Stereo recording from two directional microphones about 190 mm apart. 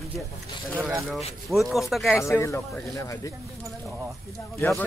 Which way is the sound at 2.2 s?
15° left (ahead or behind).